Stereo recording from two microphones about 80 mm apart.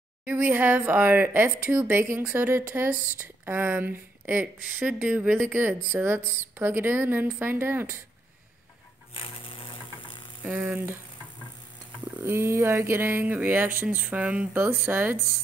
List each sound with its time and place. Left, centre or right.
0.2 s speech: centre
9.2 s sewing machine: left
10.4 s speech: right
12.2 s speech: right